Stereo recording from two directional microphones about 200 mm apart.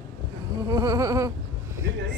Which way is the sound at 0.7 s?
15° right (ahead or behind).